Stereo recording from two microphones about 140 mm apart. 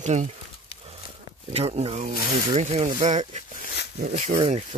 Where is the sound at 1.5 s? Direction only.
45° right (ahead or behind).